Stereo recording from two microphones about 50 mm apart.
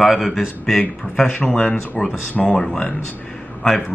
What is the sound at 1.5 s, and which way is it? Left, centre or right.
Speech, centre.